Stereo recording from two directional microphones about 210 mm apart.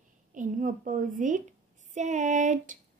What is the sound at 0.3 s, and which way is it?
A woman's voice, 40° right (ahead or behind).